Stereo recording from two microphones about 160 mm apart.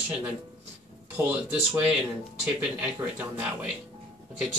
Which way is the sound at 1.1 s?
10° right (ahead or behind).